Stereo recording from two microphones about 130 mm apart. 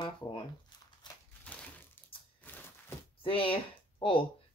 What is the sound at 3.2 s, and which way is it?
Speech, 45° left (ahead or behind).